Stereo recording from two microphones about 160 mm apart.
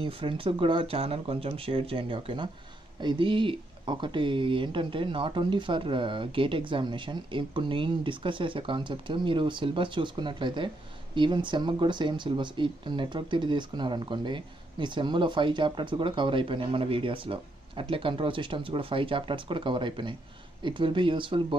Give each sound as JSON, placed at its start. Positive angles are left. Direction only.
{"t": 0.0, "sound": "speech", "side_deg": -35}